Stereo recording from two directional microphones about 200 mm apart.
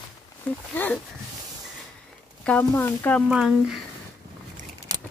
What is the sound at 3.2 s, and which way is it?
Speech, 5° right (ahead or behind).